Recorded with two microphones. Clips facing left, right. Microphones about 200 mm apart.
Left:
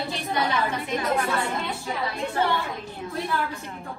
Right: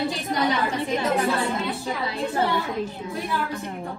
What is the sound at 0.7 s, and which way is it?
Speech, 25° right (ahead or behind).